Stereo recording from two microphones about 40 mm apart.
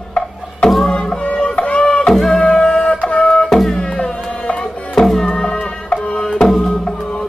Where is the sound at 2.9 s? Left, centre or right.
Left.